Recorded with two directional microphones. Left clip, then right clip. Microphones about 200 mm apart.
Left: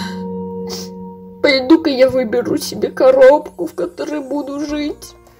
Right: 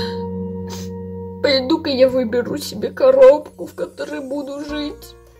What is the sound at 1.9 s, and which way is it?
A woman's voice, 5° left (ahead or behind).